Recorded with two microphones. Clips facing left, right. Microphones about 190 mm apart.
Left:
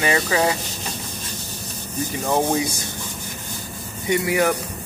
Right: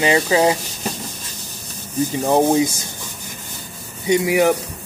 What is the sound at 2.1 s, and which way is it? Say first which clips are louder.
Speech: right 5 dB; 25° right (ahead or behind).